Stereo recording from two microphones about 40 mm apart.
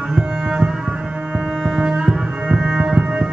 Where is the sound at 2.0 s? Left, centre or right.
Right.